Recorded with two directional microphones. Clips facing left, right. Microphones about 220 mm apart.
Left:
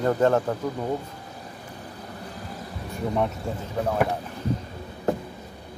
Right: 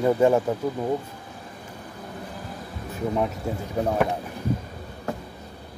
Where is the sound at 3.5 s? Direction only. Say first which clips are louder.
Right 2 dB; 5° right (ahead or behind).